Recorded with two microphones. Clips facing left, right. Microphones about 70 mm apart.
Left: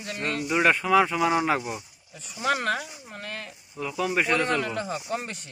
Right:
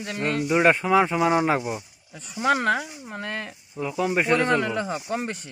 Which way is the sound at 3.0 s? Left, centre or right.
Right.